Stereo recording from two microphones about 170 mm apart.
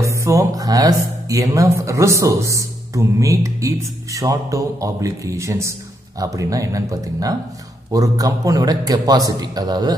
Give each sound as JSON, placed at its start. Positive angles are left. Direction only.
{"t": 0.0, "sound": "speech", "side_deg": -15}